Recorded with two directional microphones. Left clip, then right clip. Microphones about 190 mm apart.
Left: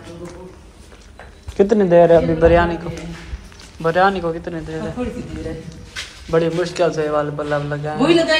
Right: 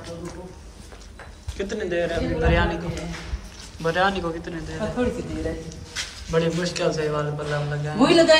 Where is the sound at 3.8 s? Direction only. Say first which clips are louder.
Left 6 dB; 10° right (ahead or behind).